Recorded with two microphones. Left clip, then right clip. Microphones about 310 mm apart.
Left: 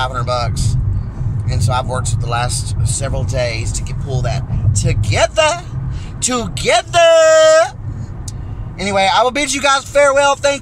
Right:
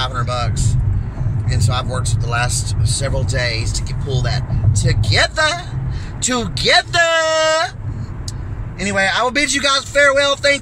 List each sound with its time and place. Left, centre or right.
0.2 s speech: centre
8.8 s speech: centre